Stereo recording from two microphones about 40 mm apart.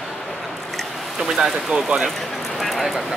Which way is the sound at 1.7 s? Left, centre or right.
Right.